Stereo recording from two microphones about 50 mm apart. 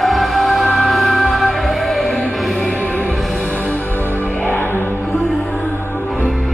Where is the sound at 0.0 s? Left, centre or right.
Centre.